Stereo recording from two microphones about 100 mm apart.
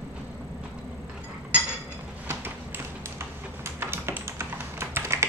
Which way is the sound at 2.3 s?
25° right (ahead or behind).